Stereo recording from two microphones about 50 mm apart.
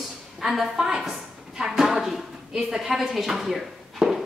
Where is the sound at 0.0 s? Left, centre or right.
Centre.